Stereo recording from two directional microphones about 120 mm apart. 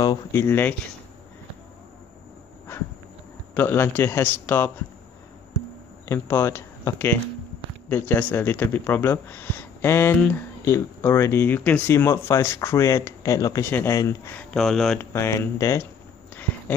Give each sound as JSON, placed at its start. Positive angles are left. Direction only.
{"t": 0.3, "sound": "speech", "side_deg": 20}
{"t": 3.5, "sound": "speech", "side_deg": 15}
{"t": 6.0, "sound": "speech", "side_deg": 20}
{"t": 13.7, "sound": "speech", "side_deg": 15}
{"t": 14.5, "sound": "speech", "side_deg": 0}
{"t": 15.0, "sound": "speech", "side_deg": 20}